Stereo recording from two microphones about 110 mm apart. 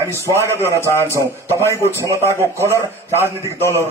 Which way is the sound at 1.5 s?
25° right (ahead or behind).